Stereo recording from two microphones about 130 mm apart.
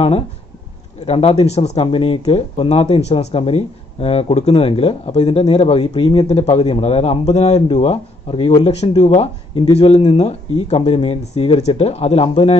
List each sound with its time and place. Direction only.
1.0 s speech: 50° left (ahead or behind)